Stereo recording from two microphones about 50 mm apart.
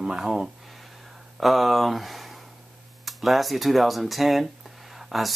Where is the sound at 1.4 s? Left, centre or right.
Centre.